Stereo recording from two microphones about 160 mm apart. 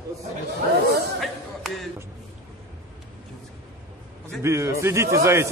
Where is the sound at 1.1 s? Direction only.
Centre (ahead or behind).